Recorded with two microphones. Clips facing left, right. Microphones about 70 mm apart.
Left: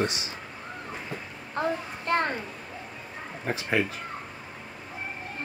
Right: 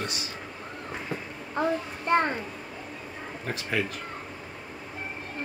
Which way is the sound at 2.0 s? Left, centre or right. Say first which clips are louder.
Right 2 dB; centre.